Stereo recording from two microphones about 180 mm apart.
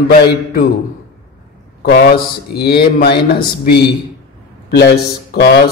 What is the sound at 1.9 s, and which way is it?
Mantra, 60° left (ahead or behind).